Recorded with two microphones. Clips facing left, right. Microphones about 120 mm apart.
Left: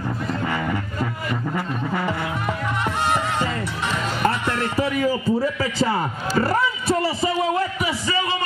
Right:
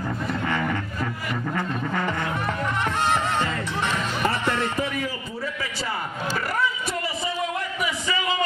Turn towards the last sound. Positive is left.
turn(degrees=30)  # may be behind; listen again after turning